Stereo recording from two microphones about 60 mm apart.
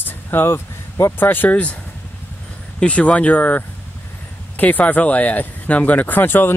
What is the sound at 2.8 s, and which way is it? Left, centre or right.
Speech, left.